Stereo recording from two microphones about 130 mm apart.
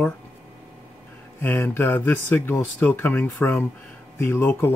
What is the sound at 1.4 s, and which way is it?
Speech, 15° left (ahead or behind).